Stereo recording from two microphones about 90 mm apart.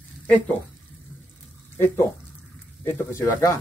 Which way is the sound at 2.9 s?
30° left (ahead or behind).